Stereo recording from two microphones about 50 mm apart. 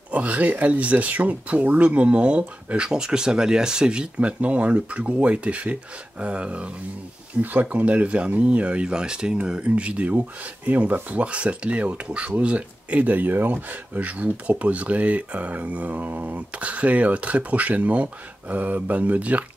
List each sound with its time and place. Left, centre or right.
0.1 s speech: right